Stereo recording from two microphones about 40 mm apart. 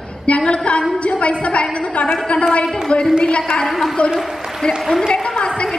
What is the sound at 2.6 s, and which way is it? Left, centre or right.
Speech, centre.